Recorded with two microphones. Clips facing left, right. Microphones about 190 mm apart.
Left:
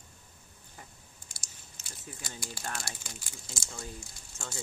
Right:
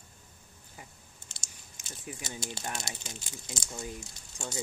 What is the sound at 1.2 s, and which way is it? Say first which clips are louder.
Speech: right 1 dB; 25° right (ahead or behind).